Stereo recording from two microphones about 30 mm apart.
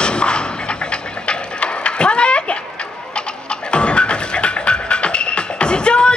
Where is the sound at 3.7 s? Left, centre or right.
Left.